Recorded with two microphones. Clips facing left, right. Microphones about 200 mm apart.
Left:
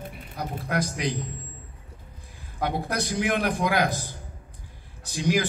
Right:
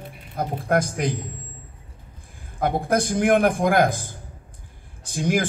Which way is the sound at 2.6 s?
50° right (ahead or behind).